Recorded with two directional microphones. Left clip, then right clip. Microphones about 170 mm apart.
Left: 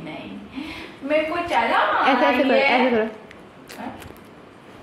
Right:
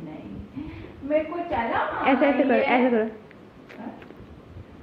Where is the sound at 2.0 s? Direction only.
15° left (ahead or behind).